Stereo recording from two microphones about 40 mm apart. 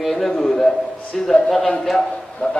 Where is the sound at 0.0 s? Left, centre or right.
Centre.